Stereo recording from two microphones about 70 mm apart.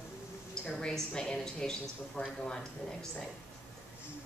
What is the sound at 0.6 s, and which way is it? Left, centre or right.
Speech, centre.